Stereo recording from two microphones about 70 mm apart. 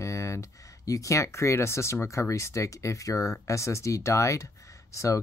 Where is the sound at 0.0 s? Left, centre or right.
Left.